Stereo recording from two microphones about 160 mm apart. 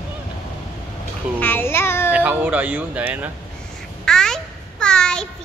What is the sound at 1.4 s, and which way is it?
Speech, 15° left (ahead or behind).